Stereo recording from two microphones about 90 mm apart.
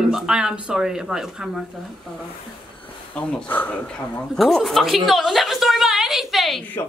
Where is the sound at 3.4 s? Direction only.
20° left (ahead or behind).